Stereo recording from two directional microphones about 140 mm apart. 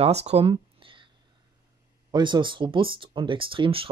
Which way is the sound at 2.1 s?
35° right (ahead or behind).